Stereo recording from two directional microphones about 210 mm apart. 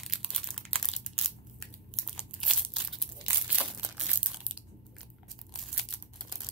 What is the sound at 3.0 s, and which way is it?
Crumpling, 5° right (ahead or behind).